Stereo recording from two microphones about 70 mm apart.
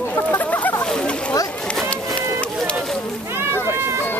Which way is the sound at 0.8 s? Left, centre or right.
Centre.